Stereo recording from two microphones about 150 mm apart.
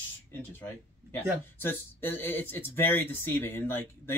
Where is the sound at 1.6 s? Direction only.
15° left (ahead or behind).